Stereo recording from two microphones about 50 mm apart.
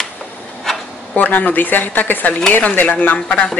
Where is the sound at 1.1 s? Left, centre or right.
Left.